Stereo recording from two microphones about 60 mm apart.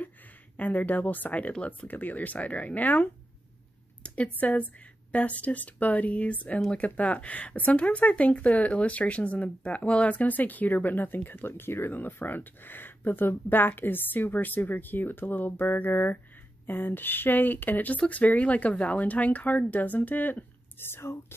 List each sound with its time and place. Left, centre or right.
0.6 s speech: left